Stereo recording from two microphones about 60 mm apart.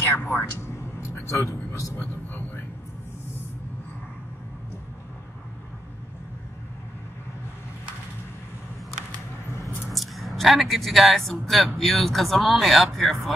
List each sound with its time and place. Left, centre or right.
0.1 s speech: left
0.7 s a sound: left
2.0 s vehicle: left
9.9 s speech: centre